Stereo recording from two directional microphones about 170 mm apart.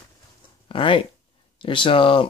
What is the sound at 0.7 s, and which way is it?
Speech, 30° left (ahead or behind).